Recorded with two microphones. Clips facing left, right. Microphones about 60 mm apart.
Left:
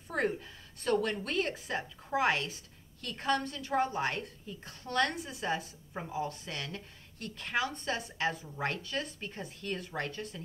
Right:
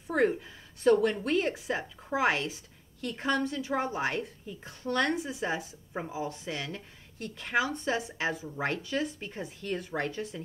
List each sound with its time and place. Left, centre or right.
0.1 s a woman's voice: centre